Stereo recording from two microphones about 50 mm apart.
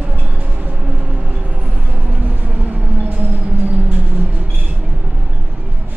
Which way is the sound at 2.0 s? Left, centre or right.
Right.